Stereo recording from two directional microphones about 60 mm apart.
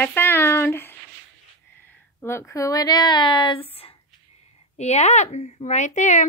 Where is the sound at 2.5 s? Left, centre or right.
Left.